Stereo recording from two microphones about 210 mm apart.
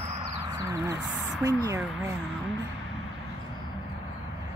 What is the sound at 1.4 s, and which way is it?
Speech, 15° right (ahead or behind).